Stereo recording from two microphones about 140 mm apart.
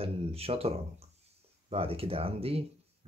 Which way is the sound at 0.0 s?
45° right (ahead or behind).